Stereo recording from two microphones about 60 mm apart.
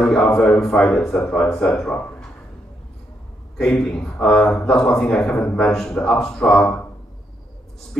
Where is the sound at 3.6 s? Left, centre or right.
Centre.